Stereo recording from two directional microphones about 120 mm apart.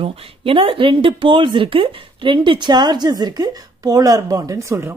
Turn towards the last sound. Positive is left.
turn(degrees=-20)  # may be behind; listen again after turning